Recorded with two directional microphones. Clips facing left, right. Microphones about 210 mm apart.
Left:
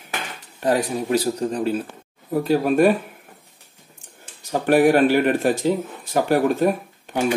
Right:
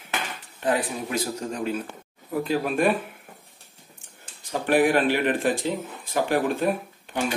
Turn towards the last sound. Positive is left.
turn(degrees=45)  # may be behind; listen again after turning